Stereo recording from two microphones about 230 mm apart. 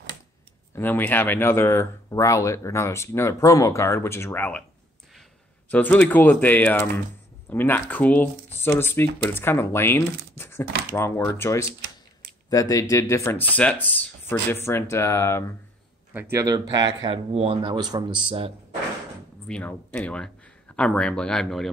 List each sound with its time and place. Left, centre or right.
0.7 s speech: centre
5.7 s speech: centre
16.1 s speech: centre
19.4 s speech: centre